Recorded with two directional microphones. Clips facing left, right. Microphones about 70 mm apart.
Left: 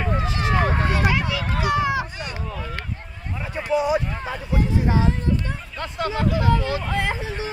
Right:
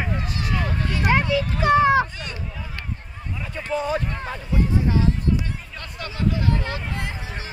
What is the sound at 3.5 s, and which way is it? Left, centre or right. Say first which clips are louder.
Speech: left 4 dB; centre.